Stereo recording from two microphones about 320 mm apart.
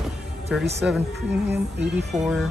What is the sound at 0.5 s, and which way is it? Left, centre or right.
Speech, centre.